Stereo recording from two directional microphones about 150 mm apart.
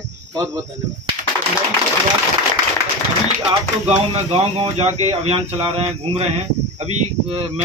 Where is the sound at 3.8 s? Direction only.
45° right (ahead or behind).